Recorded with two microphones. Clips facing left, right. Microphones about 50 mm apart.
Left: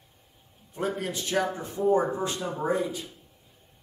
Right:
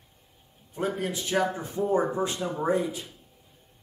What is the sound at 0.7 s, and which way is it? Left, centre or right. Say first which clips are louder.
Speech: right 1 dB; centre.